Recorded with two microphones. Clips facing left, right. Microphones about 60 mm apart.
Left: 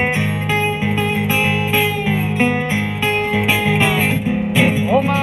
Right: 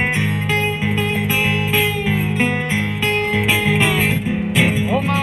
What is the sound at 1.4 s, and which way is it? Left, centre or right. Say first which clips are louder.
Music: left 1 dB; centre.